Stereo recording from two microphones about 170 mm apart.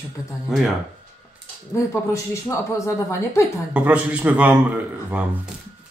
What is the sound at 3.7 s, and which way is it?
A man's voice, 10° right (ahead or behind).